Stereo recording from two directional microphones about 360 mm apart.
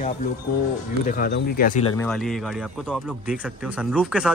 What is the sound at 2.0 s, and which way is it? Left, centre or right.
A man's voice, centre.